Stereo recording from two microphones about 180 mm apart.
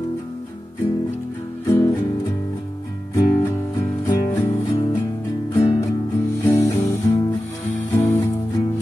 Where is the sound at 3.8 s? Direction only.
15° left (ahead or behind).